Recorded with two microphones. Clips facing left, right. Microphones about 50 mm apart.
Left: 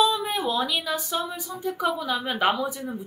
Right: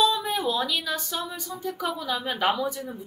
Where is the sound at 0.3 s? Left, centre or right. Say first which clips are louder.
Left 1 dB; centre.